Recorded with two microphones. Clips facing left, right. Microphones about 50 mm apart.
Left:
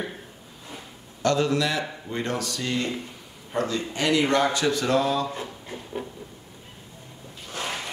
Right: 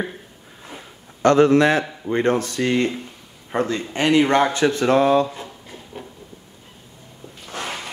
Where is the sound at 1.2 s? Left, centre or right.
Right.